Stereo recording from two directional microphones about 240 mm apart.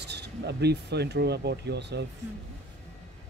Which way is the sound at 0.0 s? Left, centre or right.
Right.